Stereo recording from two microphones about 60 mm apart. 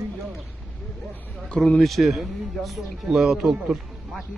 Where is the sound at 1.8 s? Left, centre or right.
Centre.